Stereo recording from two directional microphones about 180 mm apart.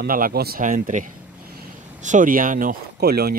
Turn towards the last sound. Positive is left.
turn(degrees=-60)  # may be behind; listen again after turning